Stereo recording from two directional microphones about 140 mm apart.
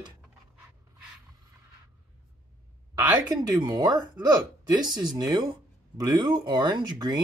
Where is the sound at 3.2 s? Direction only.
30° right (ahead or behind).